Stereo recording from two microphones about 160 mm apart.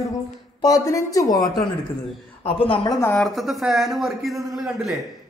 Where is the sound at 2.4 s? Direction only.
35° left (ahead or behind).